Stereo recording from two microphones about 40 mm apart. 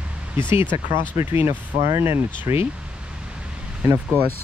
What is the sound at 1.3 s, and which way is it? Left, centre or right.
Speech, right.